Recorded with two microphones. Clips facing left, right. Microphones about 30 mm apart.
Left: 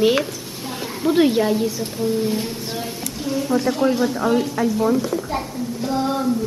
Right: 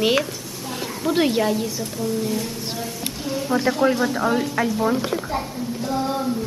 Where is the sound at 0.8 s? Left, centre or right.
Centre.